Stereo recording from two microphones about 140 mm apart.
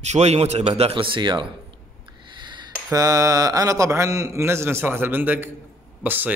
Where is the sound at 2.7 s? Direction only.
25° right (ahead or behind).